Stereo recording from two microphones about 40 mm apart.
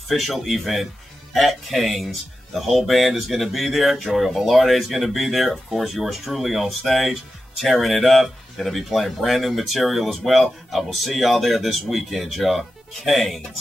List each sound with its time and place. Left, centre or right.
0.1 s speech: centre